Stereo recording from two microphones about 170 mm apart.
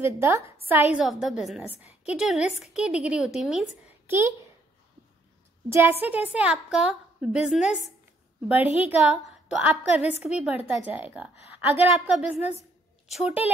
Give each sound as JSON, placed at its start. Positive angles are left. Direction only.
{"t": 0.0, "sound": "a woman's voice", "side_deg": -15}
{"t": 4.1, "sound": "a woman's voice", "side_deg": -15}
{"t": 5.7, "sound": "a woman's voice", "side_deg": -15}